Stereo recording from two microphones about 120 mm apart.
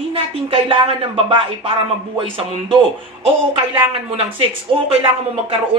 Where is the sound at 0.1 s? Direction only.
45° right (ahead or behind).